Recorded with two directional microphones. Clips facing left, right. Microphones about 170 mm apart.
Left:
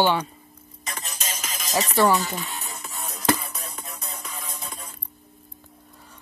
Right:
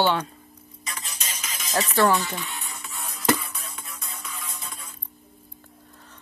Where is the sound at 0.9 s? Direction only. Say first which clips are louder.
Left 4 dB; 45° left (ahead or behind).